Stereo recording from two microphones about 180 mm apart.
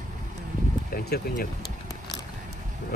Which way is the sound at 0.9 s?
55° left (ahead or behind).